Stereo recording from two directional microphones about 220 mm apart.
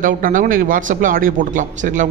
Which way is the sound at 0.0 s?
35° right (ahead or behind).